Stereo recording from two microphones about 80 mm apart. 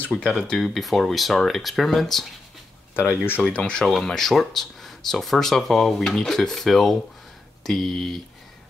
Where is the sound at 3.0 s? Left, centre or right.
Left.